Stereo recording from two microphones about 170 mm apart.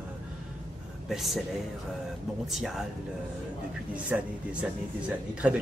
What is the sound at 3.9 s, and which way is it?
Speech, 10° right (ahead or behind).